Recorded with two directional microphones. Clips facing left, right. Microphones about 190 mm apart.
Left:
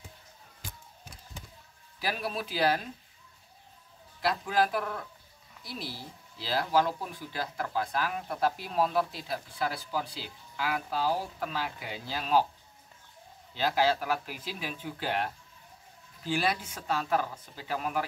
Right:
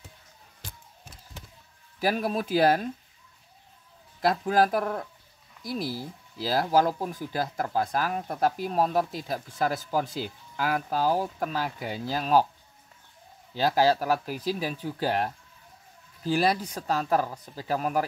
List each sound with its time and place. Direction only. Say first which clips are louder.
2.0 s speech: right 7 dB; 45° right (ahead or behind)
4.2 s speech: right 5 dB; 45° right (ahead or behind)
13.6 s speech: right 4 dB; 40° right (ahead or behind)